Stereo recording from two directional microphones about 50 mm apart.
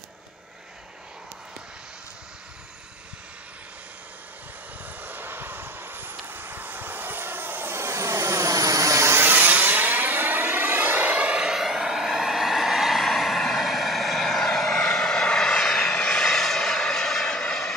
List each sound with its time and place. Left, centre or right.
5.0 s vehicle: right
9.1 s vehicle: right
11.4 s vehicle: centre